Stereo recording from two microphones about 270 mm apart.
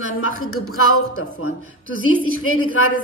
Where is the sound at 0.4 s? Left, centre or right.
Left.